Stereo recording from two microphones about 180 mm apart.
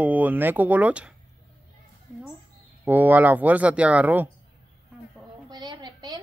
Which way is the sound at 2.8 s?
10° right (ahead or behind).